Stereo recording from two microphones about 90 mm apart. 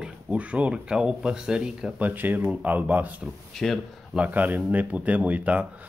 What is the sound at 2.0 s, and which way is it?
Speech, 20° right (ahead or behind).